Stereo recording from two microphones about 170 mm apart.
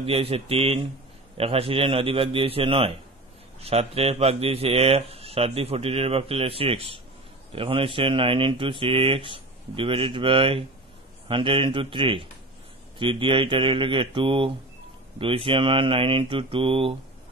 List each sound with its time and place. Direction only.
0.0 s speech: 35° right (ahead or behind)